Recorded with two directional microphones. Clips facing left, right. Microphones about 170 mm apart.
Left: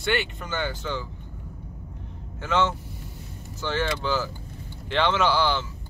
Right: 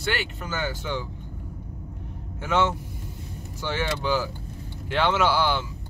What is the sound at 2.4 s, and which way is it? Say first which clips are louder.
A man's voice: right 1 dB; 10° right (ahead or behind).